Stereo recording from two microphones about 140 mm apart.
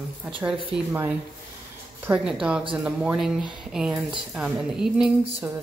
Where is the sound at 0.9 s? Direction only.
20° right (ahead or behind).